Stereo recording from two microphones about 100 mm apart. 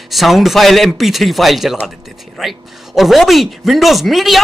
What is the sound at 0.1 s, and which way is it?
Speech, centre (ahead or behind).